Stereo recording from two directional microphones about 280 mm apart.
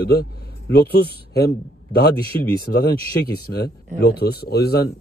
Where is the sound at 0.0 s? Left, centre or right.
Left.